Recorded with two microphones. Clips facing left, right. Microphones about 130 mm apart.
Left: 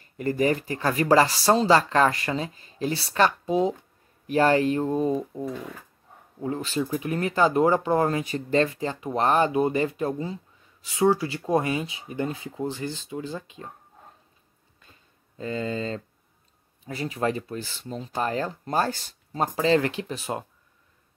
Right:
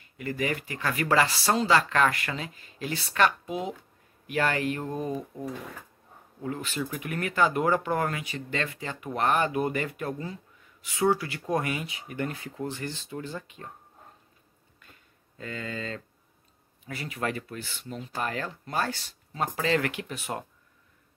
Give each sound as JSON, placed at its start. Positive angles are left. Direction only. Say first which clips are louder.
{"t": 0.0, "sound": "speech", "louder": "left 7 dB", "side_deg": 40}
{"t": 6.4, "sound": "speech", "louder": "left 5 dB", "side_deg": 30}
{"t": 8.2, "sound": "speech", "louder": "left 9 dB", "side_deg": 40}
{"t": 14.9, "sound": "a sound", "louder": "even", "side_deg": 25}
{"t": 16.8, "sound": "speech", "louder": "left 5 dB", "side_deg": 30}